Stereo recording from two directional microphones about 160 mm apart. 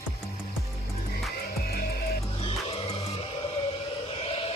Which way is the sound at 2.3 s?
35° left (ahead or behind).